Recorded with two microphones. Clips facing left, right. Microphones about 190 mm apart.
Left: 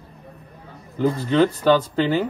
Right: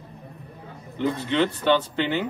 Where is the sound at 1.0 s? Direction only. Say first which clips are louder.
Left 5 dB; 35° left (ahead or behind).